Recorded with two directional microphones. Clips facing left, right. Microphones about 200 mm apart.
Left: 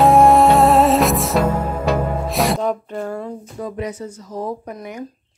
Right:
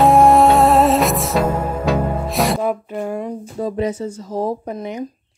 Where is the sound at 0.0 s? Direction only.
Centre (ahead or behind); by 3.3 s 15° right (ahead or behind).